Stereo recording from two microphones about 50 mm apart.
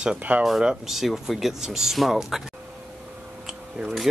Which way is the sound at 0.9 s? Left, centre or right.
Centre.